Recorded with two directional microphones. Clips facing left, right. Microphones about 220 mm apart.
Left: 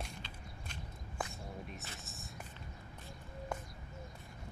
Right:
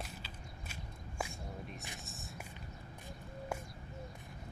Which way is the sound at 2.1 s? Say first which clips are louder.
Right 1 dB; centre (ahead or behind).